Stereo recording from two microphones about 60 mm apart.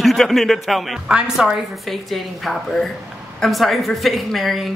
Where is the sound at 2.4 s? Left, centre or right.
Centre.